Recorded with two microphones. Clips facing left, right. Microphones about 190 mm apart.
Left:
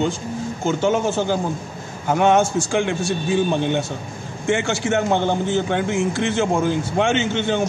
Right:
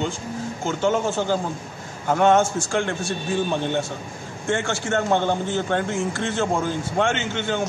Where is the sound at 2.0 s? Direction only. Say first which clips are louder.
Left 1 dB; 15° left (ahead or behind).